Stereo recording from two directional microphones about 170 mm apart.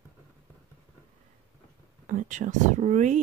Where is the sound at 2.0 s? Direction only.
50° right (ahead or behind).